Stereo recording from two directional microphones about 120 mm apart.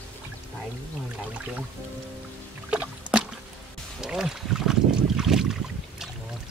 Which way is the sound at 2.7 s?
10° right (ahead or behind).